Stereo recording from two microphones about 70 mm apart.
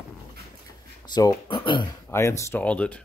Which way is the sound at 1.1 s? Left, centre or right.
Left.